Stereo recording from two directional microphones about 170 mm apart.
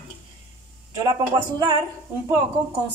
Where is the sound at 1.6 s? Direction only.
25° right (ahead or behind).